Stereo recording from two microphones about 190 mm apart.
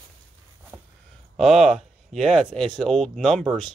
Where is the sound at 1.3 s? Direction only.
Centre (ahead or behind).